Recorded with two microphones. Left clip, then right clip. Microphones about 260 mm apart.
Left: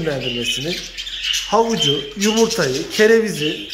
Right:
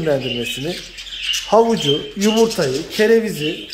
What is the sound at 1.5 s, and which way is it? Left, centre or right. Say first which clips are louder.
Speech: right 3 dB; centre.